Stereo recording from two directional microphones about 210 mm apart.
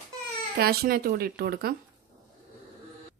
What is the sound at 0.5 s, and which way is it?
Speech, 45° right (ahead or behind).